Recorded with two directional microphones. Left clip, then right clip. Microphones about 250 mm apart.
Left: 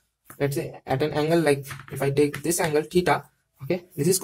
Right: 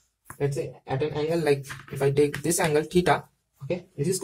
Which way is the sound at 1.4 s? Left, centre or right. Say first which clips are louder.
Left 2 dB; centre.